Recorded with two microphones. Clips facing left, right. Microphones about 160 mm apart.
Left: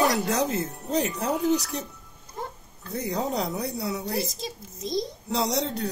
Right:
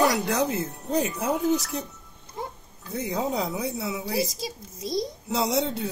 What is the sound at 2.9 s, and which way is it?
A child's voice, centre (ahead or behind).